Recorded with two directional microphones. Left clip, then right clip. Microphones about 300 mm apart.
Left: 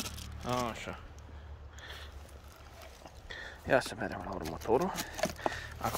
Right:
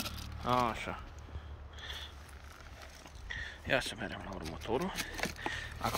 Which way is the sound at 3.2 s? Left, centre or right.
Centre.